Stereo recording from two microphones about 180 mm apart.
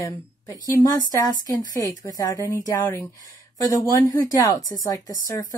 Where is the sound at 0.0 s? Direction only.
20° left (ahead or behind).